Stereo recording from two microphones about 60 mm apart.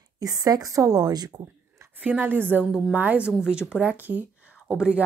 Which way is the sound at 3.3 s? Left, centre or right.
Centre.